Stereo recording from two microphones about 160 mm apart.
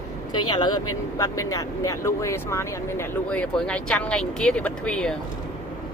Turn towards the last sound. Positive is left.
turn(degrees=5)  # may be behind; listen again after turning